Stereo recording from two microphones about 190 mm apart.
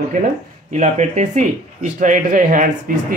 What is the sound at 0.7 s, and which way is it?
Speech, 35° right (ahead or behind).